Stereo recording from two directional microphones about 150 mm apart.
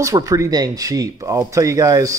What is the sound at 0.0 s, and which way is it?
Speech, 25° right (ahead or behind).